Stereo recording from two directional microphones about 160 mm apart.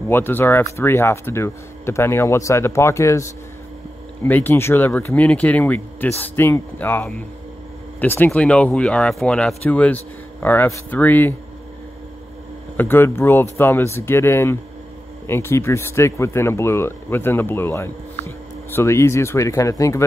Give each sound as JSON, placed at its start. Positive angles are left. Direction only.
{"t": 0.1, "sound": "speech", "side_deg": 15}
{"t": 12.7, "sound": "speech", "side_deg": 15}